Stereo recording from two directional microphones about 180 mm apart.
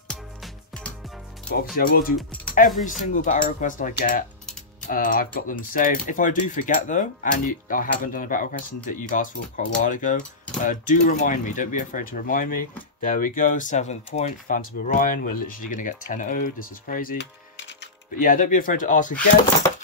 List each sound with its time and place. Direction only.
0.1 s music: 5° left (ahead or behind)
1.8 s speech: 55° left (ahead or behind)
18.2 s speech: 50° left (ahead or behind)
19.6 s a sound: 15° left (ahead or behind)